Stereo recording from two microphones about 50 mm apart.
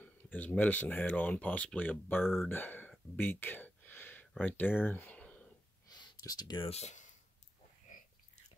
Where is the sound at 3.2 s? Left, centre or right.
Left.